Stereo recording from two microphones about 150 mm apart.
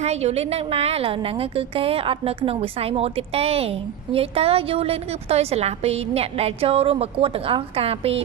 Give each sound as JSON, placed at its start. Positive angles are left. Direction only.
{"t": 0.0, "sound": "a woman's voice", "side_deg": -45}